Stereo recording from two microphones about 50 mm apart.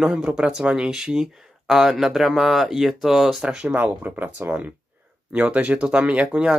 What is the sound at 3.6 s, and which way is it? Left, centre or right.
Speech, right.